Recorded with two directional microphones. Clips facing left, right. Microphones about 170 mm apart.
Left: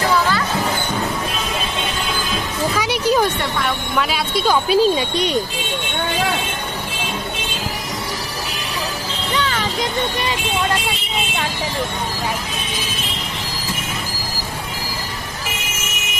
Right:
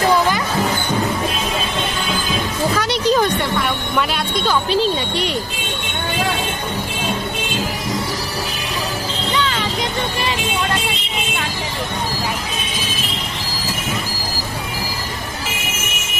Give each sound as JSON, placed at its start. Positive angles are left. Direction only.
{"t": 2.8, "sound": "a sound", "side_deg": 10}
{"t": 4.1, "sound": "a woman's voice", "side_deg": 10}
{"t": 9.4, "sound": "music", "side_deg": 40}